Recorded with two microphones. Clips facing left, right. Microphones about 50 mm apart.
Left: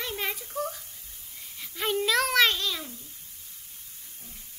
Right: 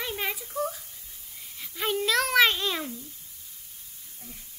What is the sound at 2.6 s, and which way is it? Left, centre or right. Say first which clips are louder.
Babbling: right 3 dB; right.